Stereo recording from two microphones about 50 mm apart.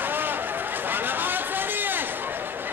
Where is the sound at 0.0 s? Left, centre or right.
Right.